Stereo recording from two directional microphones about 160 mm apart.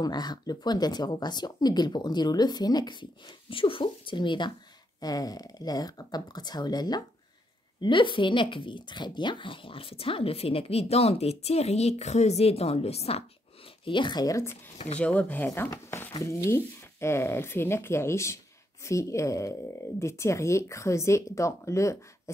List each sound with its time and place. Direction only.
0.0 s speech: 25° left (ahead or behind)
13.8 s speech: 30° left (ahead or behind)